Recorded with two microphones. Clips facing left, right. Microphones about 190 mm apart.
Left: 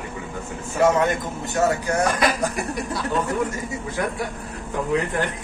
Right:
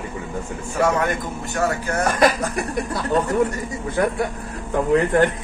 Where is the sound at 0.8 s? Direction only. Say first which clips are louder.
Left 2 dB; 20° left (ahead or behind).